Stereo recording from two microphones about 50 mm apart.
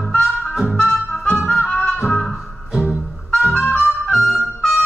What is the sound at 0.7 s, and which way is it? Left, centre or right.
Music, centre.